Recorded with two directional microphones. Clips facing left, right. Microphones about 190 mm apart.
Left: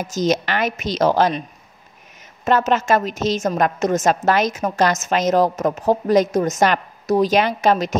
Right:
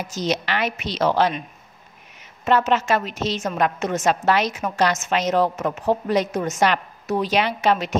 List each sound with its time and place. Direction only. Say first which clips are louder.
0.0 s a woman's voice: left 5 dB; 45° left (ahead or behind)
2.4 s a woman's voice: left 2 dB; 45° left (ahead or behind)